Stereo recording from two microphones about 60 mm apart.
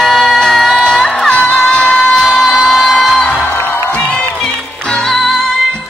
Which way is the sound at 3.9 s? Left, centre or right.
Left.